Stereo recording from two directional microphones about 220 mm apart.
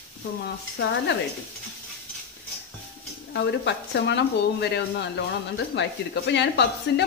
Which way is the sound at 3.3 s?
50° left (ahead or behind).